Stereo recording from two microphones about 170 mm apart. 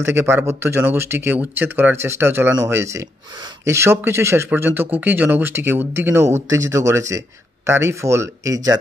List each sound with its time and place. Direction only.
0.0 s speech: 15° right (ahead or behind)